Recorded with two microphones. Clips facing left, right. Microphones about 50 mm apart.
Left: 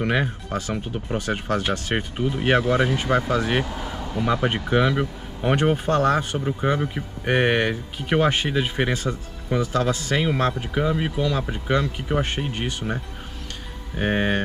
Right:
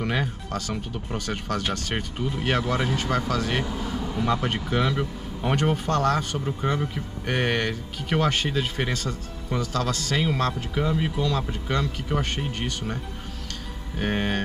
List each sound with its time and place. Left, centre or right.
0.0 s speech: left
4.0 s speech: centre